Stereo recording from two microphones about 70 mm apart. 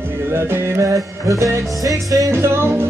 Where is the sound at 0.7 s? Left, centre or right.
Right.